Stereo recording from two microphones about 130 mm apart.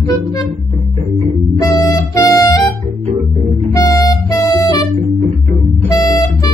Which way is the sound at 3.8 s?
30° left (ahead or behind).